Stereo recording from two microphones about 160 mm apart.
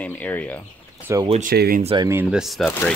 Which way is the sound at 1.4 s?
65° right (ahead or behind).